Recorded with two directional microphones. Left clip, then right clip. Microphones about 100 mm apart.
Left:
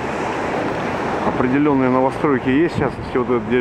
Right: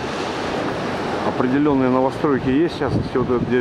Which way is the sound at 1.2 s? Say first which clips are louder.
Left 1 dB; 15° right (ahead or behind).